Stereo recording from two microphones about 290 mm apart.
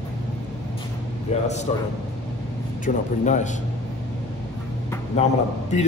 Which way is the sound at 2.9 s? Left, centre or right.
Left.